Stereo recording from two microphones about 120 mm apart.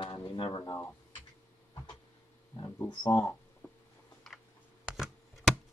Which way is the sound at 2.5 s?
30° left (ahead or behind).